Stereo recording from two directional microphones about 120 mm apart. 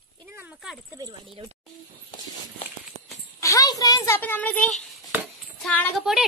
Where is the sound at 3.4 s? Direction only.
25° left (ahead or behind).